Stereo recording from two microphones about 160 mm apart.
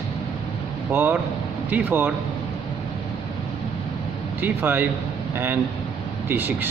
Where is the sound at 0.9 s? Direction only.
10° right (ahead or behind).